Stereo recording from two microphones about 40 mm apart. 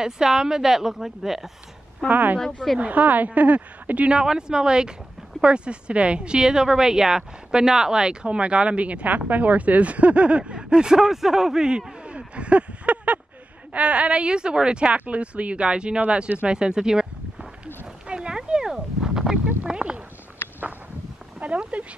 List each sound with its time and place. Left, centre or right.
0.0 s a woman's voice: centre
2.0 s a woman's voice: right
2.3 s speech: centre
2.8 s a woman's voice: right
4.2 s a woman's voice: centre
12.0 s a sound: right
13.7 s a woman's voice: right
16.5 s a sound: centre
19.7 s speech: centre
21.4 s speech: right